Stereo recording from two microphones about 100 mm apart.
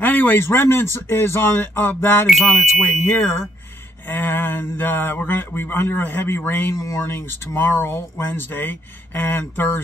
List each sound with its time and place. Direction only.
0.0 s speech: 20° left (ahead or behind)
2.2 s speech: centre (ahead or behind)
3.1 s speech: 25° left (ahead or behind)